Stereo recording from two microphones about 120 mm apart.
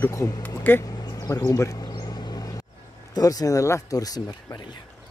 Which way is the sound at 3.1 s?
30° left (ahead or behind).